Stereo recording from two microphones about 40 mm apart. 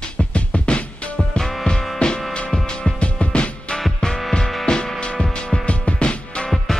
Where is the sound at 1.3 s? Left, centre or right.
Centre.